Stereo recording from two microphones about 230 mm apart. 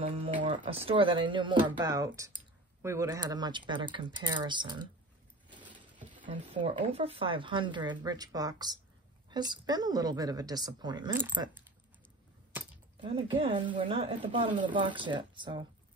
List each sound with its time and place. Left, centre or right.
0.0 s speech: right
5.5 s a sound: centre
6.5 s speech: right
13.0 s speech: right